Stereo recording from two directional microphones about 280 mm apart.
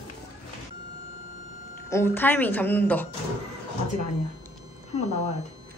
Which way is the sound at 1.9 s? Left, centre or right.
Centre.